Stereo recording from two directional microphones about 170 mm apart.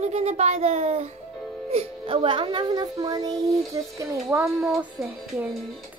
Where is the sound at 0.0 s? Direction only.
40° right (ahead or behind); by 4.1 s 20° right (ahead or behind).